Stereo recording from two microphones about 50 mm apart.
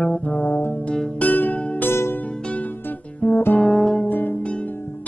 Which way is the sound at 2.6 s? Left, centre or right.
Left.